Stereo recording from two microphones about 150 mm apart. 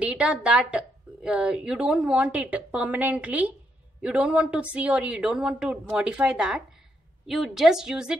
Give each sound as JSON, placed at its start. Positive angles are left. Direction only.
{"t": 0.0, "sound": "a woman's voice", "side_deg": -10}